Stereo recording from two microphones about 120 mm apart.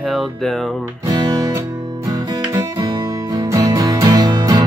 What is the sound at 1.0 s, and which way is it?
Music, 35° right (ahead or behind).